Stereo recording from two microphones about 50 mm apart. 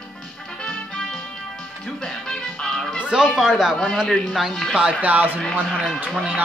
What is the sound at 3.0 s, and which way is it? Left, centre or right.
Speech, centre.